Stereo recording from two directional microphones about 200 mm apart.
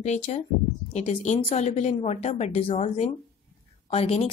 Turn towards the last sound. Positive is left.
turn(degrees=30)  # may be behind; listen again after turning